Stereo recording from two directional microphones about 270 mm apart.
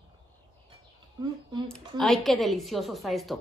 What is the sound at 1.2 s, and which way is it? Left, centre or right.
Speech, centre.